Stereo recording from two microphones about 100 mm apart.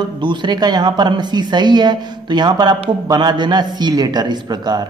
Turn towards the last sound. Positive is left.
turn(degrees=-45)  # may be behind; listen again after turning